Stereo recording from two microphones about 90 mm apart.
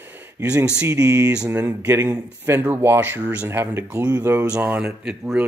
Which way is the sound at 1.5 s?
20° right (ahead or behind).